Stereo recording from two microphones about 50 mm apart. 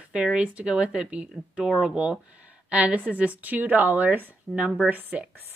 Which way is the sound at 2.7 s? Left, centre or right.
Right.